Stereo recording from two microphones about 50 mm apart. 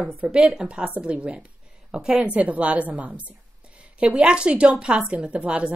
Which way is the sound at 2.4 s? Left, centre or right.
Right.